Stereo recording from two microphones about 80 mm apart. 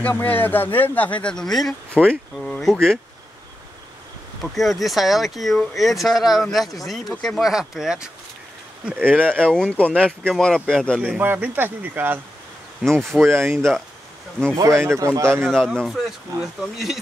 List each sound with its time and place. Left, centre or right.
0.1 s speech: left
1.3 s speech: centre
4.4 s speech: centre
8.8 s a man's voice: right
9.1 s speech: centre
11.0 s a man's voice: centre
13.3 s speech: right
15.4 s speech: centre